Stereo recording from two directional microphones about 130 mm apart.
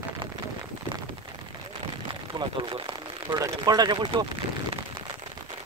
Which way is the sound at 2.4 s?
40° right (ahead or behind).